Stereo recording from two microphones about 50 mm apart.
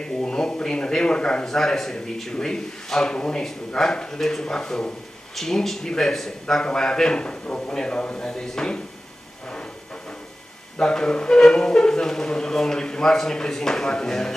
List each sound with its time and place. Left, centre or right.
0.0 s a man's voice: centre
10.8 s speech: centre